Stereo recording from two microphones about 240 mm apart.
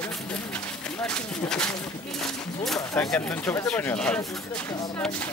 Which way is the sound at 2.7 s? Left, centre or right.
Centre.